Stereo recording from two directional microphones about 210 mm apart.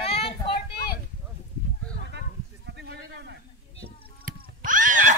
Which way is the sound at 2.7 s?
55° right (ahead or behind).